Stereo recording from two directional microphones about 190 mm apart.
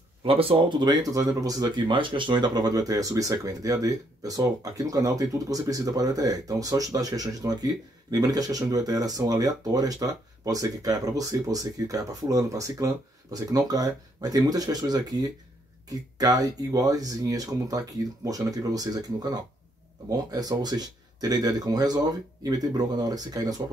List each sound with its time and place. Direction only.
0.2 s speech: 30° right (ahead or behind)